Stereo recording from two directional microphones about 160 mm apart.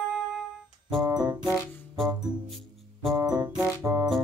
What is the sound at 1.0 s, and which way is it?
Music, 20° right (ahead or behind).